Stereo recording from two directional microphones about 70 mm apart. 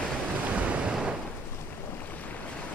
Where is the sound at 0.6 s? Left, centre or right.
Centre.